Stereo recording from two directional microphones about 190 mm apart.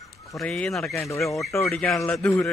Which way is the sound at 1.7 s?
Centre (ahead or behind).